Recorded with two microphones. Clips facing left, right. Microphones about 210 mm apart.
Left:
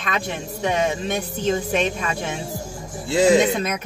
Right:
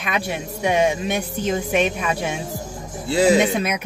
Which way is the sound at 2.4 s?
20° right (ahead or behind).